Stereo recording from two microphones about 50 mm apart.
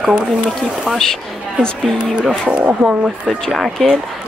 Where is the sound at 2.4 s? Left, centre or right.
Right.